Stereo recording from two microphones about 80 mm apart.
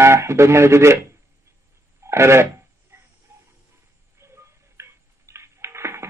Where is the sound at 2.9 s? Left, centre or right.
Right.